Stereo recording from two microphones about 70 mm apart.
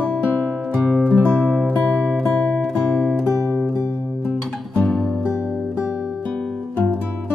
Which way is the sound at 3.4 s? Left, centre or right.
Left.